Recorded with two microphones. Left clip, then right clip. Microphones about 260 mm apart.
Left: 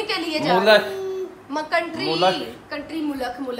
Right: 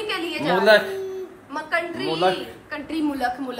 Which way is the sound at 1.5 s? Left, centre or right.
Left.